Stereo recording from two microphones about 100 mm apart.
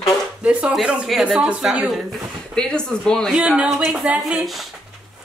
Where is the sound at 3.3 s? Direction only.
10° right (ahead or behind).